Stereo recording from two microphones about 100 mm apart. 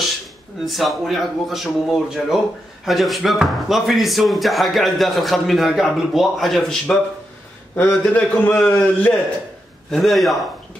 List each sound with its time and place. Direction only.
0.7 s speech: centre (ahead or behind)
8.0 s a man's voice: 15° left (ahead or behind)
9.8 s speech: 5° left (ahead or behind)